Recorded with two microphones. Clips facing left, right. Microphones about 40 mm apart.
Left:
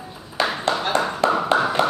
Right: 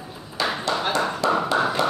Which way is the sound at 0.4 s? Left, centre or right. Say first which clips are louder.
Left 3 dB; left.